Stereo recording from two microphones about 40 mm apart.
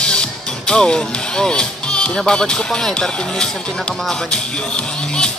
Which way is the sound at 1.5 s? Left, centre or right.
Left.